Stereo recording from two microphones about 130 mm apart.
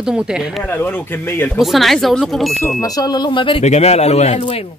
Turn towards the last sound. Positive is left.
turn(degrees=55)  # may be behind; listen again after turning